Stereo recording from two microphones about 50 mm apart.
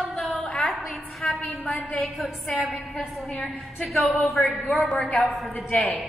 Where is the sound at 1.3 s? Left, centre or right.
Left.